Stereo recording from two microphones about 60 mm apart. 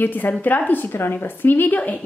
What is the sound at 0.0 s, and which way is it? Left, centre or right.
Speech, left.